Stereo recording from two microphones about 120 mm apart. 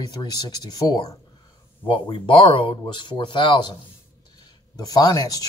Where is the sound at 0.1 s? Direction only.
35° left (ahead or behind).